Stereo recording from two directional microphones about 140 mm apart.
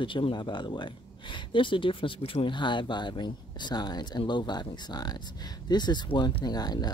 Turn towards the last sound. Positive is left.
turn(degrees=30)  # may be behind; listen again after turning